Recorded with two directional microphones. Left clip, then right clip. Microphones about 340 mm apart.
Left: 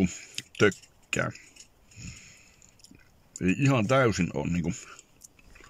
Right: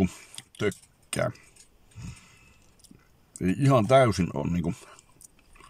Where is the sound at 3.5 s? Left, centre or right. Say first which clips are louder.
Right 4 dB; right.